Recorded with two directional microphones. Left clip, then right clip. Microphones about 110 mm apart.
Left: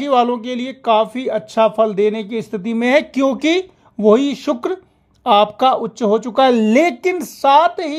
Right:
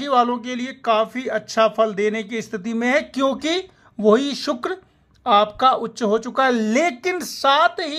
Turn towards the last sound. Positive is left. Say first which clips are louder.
# left 5 dB
turn(degrees=35)  # may be behind; listen again after turning